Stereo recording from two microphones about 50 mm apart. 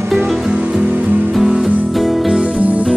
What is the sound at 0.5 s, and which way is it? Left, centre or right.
Music, centre.